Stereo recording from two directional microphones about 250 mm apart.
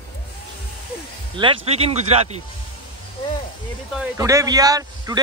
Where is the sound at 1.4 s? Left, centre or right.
Right.